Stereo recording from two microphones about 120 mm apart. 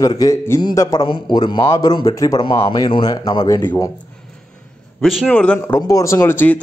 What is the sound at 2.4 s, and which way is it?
Speech, 55° left (ahead or behind).